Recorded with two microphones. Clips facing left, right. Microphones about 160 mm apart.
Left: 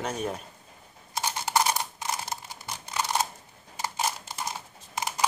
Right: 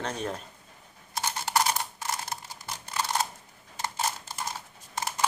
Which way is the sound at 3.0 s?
15° left (ahead or behind).